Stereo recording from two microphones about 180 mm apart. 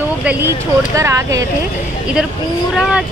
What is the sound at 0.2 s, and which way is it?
Speech, 10° right (ahead or behind).